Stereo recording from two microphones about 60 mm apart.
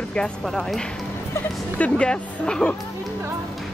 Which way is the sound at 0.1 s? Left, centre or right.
Centre.